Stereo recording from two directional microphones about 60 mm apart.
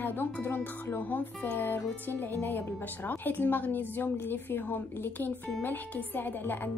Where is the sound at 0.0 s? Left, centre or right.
Left.